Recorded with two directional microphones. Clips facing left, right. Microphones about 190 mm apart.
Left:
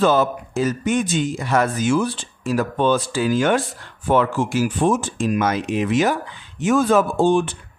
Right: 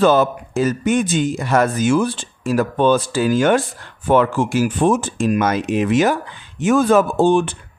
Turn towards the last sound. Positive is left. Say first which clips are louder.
# right 2 dB
turn(degrees=-60)  # may be behind; listen again after turning